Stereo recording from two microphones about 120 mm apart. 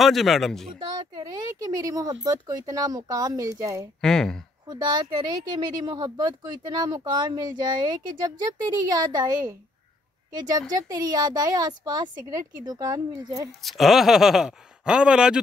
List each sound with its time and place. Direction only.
0.0 s speech: centre (ahead or behind)
0.9 s speech: 35° right (ahead or behind)
4.0 s speech: 5° left (ahead or behind)
4.6 s speech: 35° right (ahead or behind)
10.7 s speech: 35° right (ahead or behind)
13.6 s speech: centre (ahead or behind)